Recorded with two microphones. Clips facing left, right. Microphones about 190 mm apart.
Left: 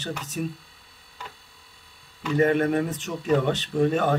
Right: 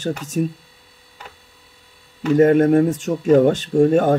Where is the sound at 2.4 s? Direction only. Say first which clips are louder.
Right 8 dB; 45° right (ahead or behind).